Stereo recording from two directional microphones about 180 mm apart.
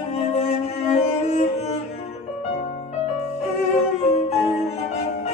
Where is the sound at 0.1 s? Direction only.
35° left (ahead or behind).